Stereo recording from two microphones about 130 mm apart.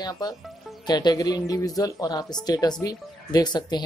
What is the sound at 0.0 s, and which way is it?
Speech, 30° left (ahead or behind).